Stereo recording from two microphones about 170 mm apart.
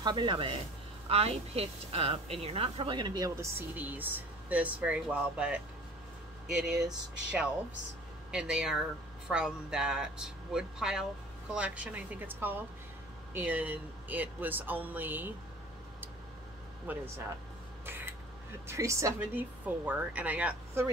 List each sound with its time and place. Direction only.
0.0 s a woman's voice: 25° right (ahead or behind); by 15.3 s 10° right (ahead or behind)
16.9 s speech: 10° right (ahead or behind)
17.8 s a sound: 15° right (ahead or behind)
18.7 s speech: 15° right (ahead or behind)